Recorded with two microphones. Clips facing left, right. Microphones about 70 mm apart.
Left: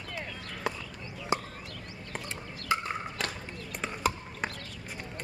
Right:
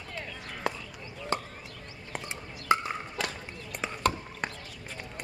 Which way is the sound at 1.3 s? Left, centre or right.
Centre.